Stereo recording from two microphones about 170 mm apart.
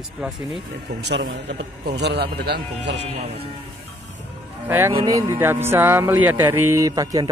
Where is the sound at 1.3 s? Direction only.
90° right.